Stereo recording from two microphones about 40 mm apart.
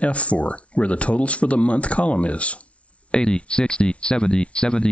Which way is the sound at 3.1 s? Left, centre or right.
Left.